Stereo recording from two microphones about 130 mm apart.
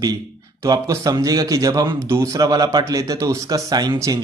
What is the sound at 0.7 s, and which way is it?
A man's voice, 30° right (ahead or behind).